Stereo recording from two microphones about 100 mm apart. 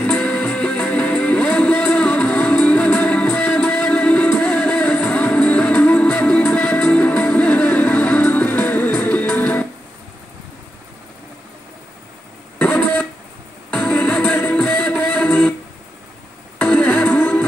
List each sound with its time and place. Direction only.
0.0 s music: 15° left (ahead or behind)
12.5 s a sound: 15° left (ahead or behind)
13.7 s music: 15° left (ahead or behind)
16.5 s music: 15° left (ahead or behind)